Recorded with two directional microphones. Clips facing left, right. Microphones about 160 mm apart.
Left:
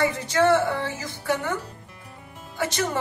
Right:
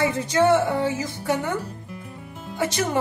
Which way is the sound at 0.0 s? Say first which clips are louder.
Right 1 dB; 20° right (ahead or behind).